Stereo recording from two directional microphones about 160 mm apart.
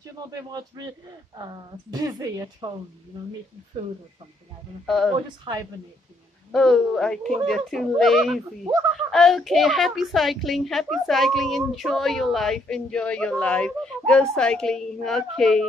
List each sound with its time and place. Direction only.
0.3 s speech: 25° right (ahead or behind)
4.8 s a woman's voice: centre (ahead or behind)
6.5 s a woman's voice: centre (ahead or behind)